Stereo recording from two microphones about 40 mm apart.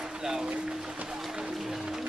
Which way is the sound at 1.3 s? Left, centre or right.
Centre.